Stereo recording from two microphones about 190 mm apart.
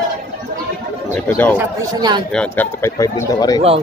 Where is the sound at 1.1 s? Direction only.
10° left (ahead or behind).